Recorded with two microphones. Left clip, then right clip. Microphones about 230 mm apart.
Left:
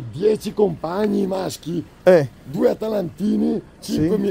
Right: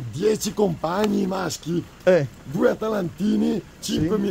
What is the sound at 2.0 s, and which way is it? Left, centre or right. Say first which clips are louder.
Speech: left 5 dB; left.